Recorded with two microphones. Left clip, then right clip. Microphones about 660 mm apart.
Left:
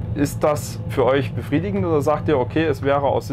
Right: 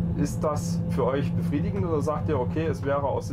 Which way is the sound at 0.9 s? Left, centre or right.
Left.